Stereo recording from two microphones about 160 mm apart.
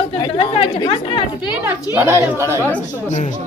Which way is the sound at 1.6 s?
15° right (ahead or behind).